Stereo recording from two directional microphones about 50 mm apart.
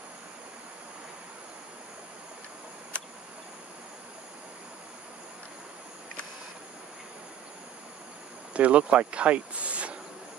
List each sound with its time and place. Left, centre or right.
8.5 s speech: right